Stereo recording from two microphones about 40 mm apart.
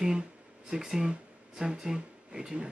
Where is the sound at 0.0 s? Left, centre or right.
Centre.